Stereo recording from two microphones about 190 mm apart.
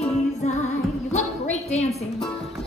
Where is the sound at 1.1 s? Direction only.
35° left (ahead or behind).